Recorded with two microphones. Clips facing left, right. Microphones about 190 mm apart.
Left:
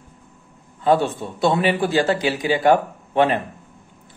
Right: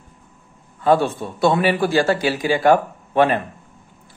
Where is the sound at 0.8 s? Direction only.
20° left (ahead or behind).